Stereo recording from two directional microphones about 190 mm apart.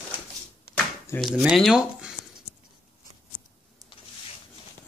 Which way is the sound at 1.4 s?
5° right (ahead or behind).